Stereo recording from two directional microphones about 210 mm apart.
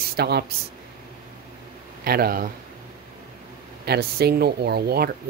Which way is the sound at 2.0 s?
45° right (ahead or behind).